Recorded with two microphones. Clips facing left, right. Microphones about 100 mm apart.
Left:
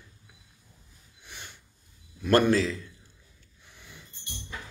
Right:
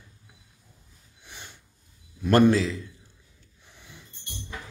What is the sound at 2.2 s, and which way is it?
Speech, 15° right (ahead or behind).